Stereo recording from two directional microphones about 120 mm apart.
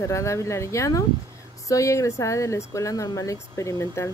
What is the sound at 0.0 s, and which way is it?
Speech, 25° left (ahead or behind).